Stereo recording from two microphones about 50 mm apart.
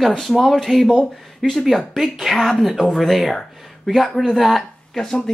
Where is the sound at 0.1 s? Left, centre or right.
Centre.